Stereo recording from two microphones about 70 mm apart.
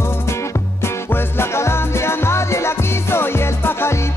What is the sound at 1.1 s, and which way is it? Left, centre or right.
Music, left.